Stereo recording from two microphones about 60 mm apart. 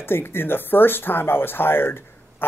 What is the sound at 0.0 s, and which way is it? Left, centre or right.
A man's voice, left.